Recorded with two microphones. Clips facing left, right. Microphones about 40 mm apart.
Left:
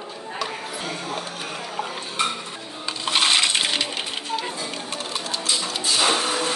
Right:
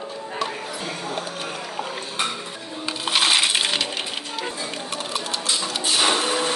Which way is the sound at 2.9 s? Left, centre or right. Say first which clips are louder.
Even; centre.